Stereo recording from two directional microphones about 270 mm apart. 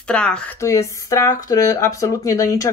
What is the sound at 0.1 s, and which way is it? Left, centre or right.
Speech, centre.